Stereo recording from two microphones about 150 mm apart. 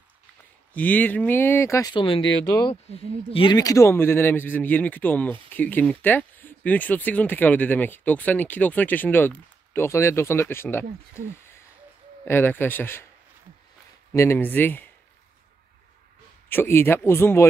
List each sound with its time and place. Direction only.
0.7 s speech: 10° left (ahead or behind); by 3.5 s 40° left (ahead or behind)
3.5 s speech: 20° left (ahead or behind)
14.1 s speech: 20° left (ahead or behind)
16.4 s speech: 15° left (ahead or behind)